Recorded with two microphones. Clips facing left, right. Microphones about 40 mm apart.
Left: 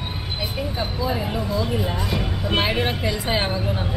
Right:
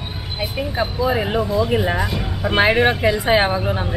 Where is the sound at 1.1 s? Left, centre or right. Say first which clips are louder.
Right 6 dB; right.